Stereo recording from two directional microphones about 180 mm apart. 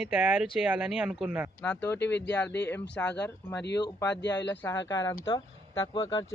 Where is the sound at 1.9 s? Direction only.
70° left (ahead or behind).